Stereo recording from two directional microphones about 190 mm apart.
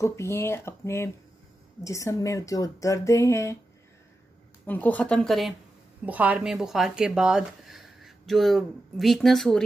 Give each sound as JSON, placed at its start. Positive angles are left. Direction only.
{"t": 0.0, "sound": "speech", "side_deg": 15}
{"t": 4.6, "sound": "speech", "side_deg": 10}